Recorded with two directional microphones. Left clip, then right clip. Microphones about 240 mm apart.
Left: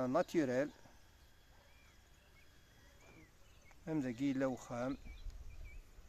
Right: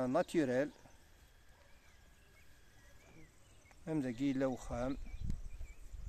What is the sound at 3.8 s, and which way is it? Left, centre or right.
Speech, centre.